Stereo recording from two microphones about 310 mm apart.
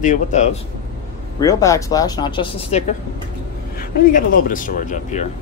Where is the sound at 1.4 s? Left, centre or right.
Centre.